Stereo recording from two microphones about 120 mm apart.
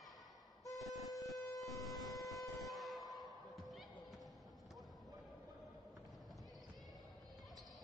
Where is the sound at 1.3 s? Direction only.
30° left (ahead or behind).